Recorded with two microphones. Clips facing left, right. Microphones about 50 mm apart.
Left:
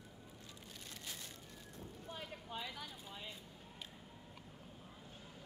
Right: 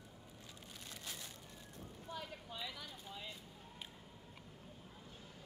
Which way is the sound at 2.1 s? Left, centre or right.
Left.